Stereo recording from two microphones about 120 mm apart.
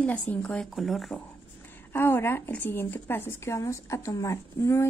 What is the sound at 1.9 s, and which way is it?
A woman's voice, 20° left (ahead or behind).